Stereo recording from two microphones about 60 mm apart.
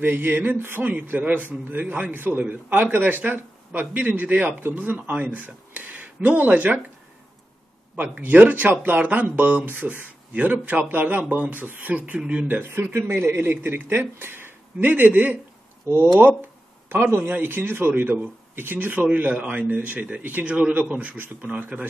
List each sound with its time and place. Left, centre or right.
0.0 s a man's voice: right
7.9 s speech: right
12.4 s a man's voice: right